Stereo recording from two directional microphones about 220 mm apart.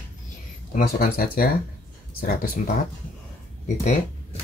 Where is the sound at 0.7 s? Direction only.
40° left (ahead or behind).